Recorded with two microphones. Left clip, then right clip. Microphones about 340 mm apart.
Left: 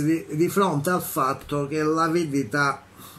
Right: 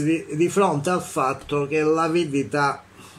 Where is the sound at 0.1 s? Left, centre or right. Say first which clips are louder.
Right 2 dB; centre.